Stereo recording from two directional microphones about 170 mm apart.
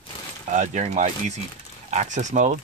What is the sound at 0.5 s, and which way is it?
Speech, 45° right (ahead or behind).